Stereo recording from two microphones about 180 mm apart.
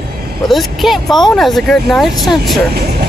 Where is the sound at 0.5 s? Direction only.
Centre (ahead or behind).